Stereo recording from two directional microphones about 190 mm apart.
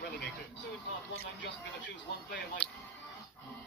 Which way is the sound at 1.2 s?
70° left (ahead or behind).